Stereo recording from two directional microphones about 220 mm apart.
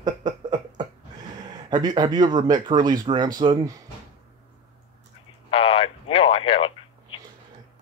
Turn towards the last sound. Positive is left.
turn(degrees=25)  # may be behind; listen again after turning